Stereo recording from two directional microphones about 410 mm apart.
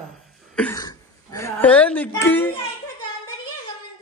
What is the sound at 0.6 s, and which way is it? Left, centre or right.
Music, centre.